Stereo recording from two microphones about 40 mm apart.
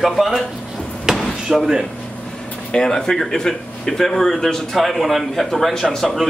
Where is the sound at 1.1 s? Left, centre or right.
Centre.